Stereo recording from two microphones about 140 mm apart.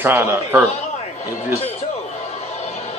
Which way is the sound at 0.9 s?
50° left (ahead or behind).